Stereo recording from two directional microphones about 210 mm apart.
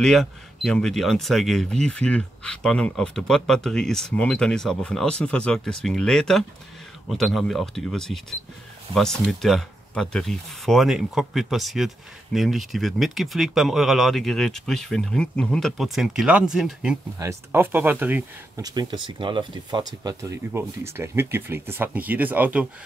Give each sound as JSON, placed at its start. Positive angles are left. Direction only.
{"t": 0.0, "sound": "speech", "side_deg": 0}